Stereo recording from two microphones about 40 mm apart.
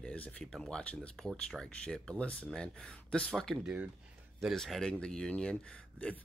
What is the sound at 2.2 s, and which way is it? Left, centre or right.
Speech, left.